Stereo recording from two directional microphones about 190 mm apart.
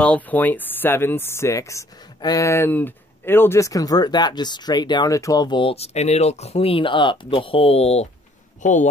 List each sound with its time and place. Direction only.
0.0 s speech: 10° left (ahead or behind); by 8.1 s 35° left (ahead or behind)